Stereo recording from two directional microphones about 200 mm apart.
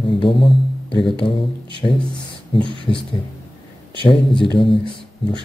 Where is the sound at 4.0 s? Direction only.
25° left (ahead or behind).